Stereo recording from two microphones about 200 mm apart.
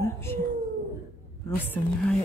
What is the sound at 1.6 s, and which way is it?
Speech, 10° left (ahead or behind).